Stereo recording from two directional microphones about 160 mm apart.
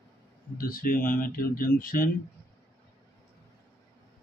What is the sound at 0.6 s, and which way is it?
Speech, 65° left (ahead or behind).